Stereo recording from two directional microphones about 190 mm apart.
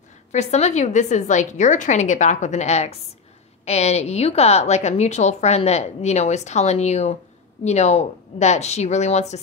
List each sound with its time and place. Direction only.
0.3 s a woman's voice: 35° left (ahead or behind)